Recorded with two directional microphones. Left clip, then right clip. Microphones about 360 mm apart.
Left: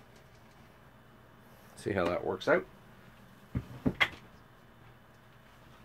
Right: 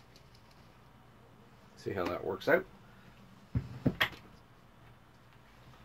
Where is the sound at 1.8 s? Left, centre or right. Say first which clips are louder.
Left 4 dB; left.